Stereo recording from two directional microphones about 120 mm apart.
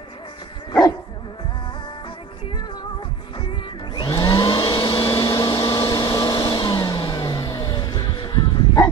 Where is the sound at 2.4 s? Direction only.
40° left (ahead or behind).